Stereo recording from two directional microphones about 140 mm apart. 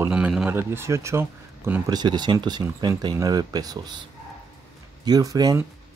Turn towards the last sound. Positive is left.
turn(degrees=-25)  # may be behind; listen again after turning